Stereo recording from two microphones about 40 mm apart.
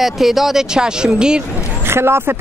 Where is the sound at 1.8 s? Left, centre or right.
Right.